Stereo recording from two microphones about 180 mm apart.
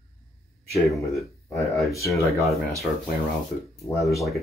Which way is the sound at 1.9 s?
15° left (ahead or behind).